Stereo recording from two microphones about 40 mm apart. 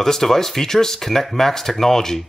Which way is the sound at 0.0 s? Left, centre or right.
Centre.